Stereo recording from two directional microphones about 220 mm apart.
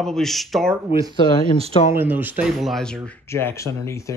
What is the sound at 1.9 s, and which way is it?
Speech, 10° right (ahead or behind).